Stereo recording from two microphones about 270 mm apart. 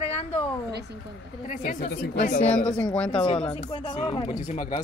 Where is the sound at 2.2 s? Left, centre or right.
Left.